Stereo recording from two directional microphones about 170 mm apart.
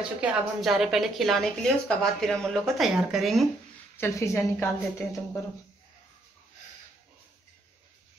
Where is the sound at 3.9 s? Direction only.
15° left (ahead or behind).